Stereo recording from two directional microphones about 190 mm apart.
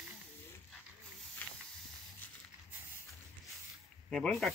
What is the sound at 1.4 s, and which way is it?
Hiss, 10° left (ahead or behind).